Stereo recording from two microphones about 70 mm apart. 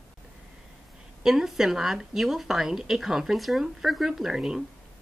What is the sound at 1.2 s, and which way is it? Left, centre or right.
A woman's voice, centre.